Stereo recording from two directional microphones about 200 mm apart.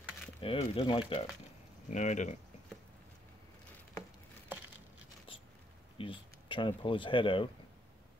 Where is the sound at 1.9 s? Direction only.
35° left (ahead or behind).